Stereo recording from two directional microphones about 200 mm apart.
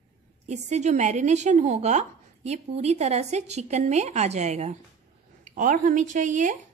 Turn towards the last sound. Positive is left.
turn(degrees=-35)  # may be behind; listen again after turning